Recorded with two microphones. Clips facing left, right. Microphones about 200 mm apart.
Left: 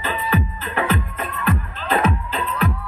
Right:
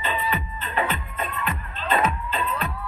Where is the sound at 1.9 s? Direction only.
75° left (ahead or behind).